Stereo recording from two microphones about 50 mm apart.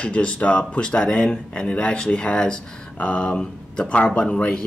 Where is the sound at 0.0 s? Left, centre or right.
Left.